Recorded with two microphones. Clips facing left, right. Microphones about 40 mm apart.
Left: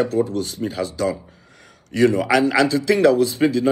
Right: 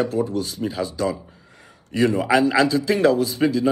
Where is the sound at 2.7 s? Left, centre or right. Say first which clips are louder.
Left 2 dB; left.